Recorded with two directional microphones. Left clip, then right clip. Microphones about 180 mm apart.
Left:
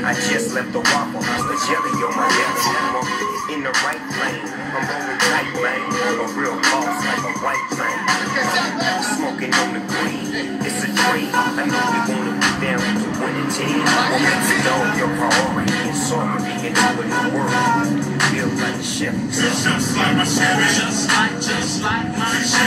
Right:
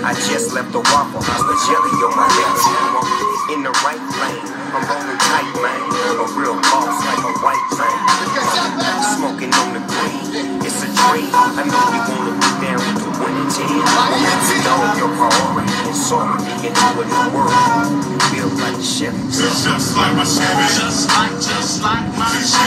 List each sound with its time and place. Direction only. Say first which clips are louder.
2.2 s music: right 2 dB; 35° right (ahead or behind)
8.0 s music: right 4 dB; 35° right (ahead or behind)
11.0 s music: right 6 dB; 35° right (ahead or behind)
13.8 s music: right 3 dB; 35° right (ahead or behind)